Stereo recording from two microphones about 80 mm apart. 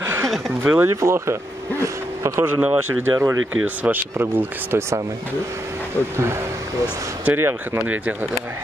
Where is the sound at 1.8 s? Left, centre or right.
Right.